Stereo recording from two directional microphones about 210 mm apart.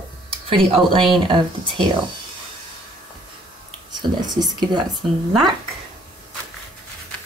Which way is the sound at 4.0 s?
20° right (ahead or behind).